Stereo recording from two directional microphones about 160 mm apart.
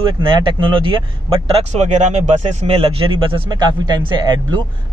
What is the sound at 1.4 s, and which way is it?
Speech, 45° right (ahead or behind).